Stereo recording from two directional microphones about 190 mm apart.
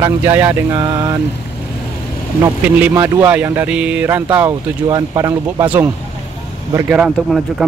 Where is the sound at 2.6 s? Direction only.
15° right (ahead or behind).